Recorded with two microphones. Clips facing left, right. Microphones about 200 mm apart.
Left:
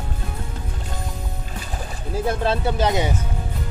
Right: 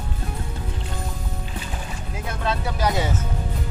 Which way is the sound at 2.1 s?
30° left (ahead or behind).